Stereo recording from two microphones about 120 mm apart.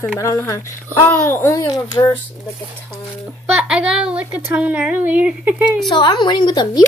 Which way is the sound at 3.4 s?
10° right (ahead or behind).